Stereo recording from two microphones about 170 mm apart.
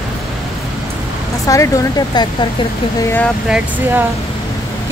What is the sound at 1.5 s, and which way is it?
Speech, 20° left (ahead or behind).